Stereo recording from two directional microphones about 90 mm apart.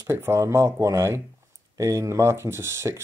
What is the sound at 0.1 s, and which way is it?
Speech, 30° right (ahead or behind).